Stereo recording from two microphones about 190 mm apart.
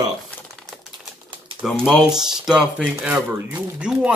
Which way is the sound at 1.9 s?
5° right (ahead or behind).